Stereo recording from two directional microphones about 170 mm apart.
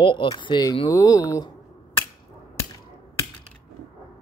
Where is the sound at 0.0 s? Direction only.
30° left (ahead or behind).